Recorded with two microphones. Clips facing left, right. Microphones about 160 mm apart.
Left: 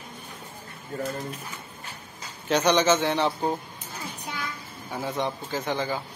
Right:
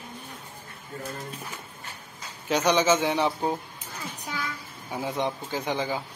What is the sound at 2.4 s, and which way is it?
Speech, 5° right (ahead or behind).